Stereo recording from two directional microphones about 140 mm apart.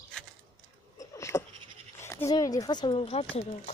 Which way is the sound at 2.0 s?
20° left (ahead or behind).